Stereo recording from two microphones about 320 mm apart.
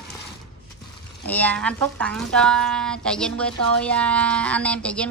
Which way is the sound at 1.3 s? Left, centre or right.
Centre.